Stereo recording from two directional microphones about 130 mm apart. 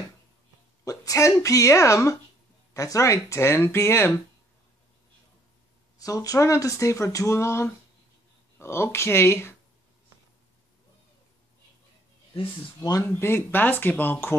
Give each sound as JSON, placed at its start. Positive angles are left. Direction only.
{"t": 0.8, "sound": "speech", "side_deg": 25}
{"t": 5.9, "sound": "speech", "side_deg": 25}
{"t": 12.4, "sound": "speech", "side_deg": 30}
{"t": 13.0, "sound": "speech", "side_deg": 15}